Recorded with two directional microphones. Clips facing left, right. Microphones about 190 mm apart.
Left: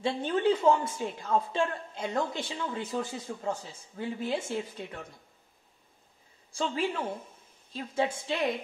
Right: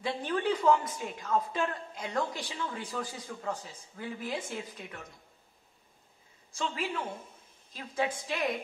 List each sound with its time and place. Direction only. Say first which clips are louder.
0.0 s speech: left 4 dB; 25° left (ahead or behind)
6.5 s a woman's voice: left 4 dB; 30° left (ahead or behind)